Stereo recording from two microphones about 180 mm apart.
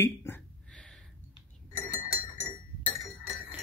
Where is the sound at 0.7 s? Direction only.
5° left (ahead or behind).